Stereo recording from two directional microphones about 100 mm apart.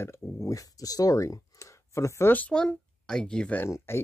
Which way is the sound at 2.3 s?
10° left (ahead or behind).